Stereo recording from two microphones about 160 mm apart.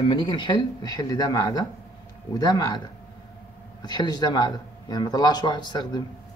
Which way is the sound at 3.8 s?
25° left (ahead or behind).